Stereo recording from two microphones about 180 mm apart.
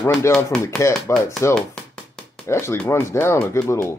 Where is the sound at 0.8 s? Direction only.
15° left (ahead or behind).